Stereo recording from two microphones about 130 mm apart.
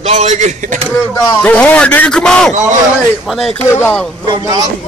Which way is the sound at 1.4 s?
10° left (ahead or behind).